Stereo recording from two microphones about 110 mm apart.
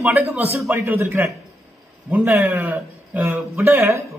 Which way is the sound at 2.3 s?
25° right (ahead or behind).